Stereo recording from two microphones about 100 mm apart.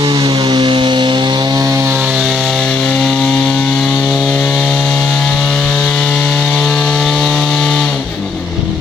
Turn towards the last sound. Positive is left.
turn(degrees=5)  # may be behind; listen again after turning